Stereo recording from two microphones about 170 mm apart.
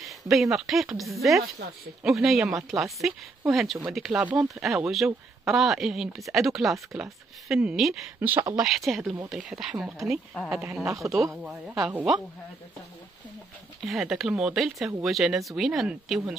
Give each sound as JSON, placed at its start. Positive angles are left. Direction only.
{"t": 0.0, "sound": "speech", "side_deg": 0}
{"t": 10.6, "sound": "speech", "side_deg": -20}
{"t": 13.7, "sound": "speech", "side_deg": 0}